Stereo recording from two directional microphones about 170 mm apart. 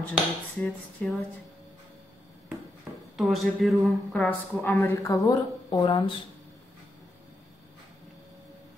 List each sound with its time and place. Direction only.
0.1 s speech: centre (ahead or behind)
3.2 s speech: centre (ahead or behind)
4.6 s speech: 15° left (ahead or behind)